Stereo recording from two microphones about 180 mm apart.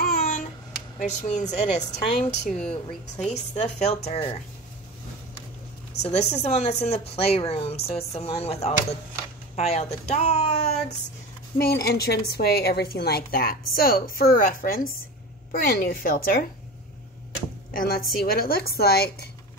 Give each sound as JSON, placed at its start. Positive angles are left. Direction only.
{"t": 0.0, "sound": "babbling", "side_deg": 45}
{"t": 0.9, "sound": "a woman's voice", "side_deg": 40}
{"t": 6.0, "sound": "a woman's voice", "side_deg": 35}
{"t": 11.5, "sound": "a woman's voice", "side_deg": 60}
{"t": 17.7, "sound": "a woman's voice", "side_deg": 55}